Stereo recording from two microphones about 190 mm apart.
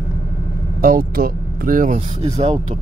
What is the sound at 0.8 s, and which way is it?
Speech, 50° right (ahead or behind).